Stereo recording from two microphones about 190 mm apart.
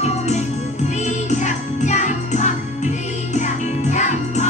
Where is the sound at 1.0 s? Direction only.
40° left (ahead or behind).